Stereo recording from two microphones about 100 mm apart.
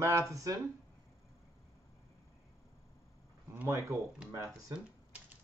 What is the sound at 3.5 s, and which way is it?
Speech, 30° right (ahead or behind).